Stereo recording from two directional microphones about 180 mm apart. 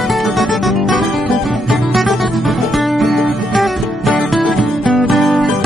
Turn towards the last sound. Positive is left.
turn(degrees=0)  # may be behind; listen again after turning